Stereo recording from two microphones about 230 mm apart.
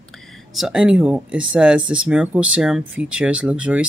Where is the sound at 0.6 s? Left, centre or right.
Centre.